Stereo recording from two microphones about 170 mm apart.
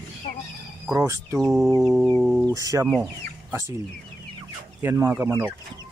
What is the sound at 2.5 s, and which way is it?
Speech, 20° right (ahead or behind).